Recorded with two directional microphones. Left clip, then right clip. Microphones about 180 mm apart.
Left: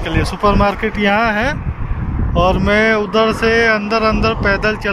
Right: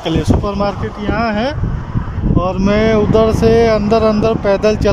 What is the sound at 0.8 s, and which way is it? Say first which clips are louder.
Speech: left 6 dB; 5° left (ahead or behind).